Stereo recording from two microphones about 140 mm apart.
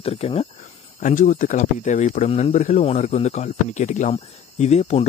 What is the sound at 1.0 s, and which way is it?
Speech, 70° left (ahead or behind).